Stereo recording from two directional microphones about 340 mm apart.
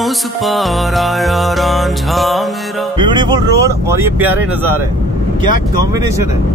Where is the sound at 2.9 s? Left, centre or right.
Centre.